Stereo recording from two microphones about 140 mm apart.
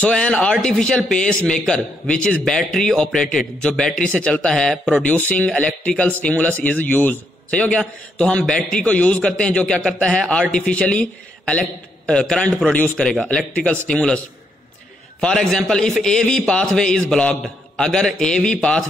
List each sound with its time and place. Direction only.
0.0 s a man's voice: 5° left (ahead or behind)